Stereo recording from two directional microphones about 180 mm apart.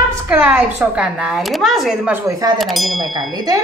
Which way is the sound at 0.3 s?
10° right (ahead or behind).